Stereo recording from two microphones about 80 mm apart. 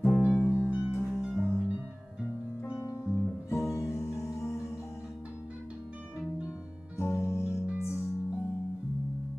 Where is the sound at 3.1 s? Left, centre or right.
Centre.